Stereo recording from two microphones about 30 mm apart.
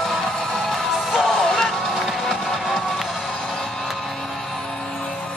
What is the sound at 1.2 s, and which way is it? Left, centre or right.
Music, centre.